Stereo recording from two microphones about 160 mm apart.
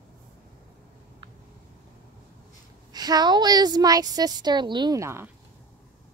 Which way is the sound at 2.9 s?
25° right (ahead or behind).